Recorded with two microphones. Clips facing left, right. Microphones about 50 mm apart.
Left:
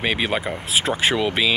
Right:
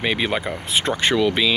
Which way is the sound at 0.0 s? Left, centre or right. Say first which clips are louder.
Even; centre.